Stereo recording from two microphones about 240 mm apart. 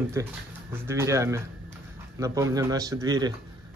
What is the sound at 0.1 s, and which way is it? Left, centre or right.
Speech, centre.